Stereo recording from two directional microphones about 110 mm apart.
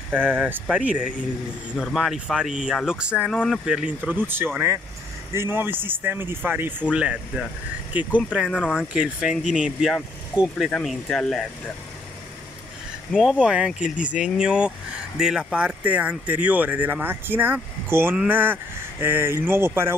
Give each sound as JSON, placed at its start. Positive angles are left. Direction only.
{"t": 0.1, "sound": "speech", "side_deg": -15}
{"t": 8.5, "sound": "speech", "side_deg": 10}
{"t": 8.7, "sound": "speech", "side_deg": -10}
{"t": 13.2, "sound": "speech", "side_deg": -5}